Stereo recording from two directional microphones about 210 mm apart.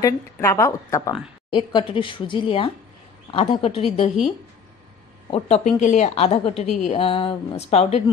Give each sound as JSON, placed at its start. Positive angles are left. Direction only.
{"t": 0.0, "sound": "a woman's voice", "side_deg": 15}
{"t": 5.3, "sound": "a woman's voice", "side_deg": 30}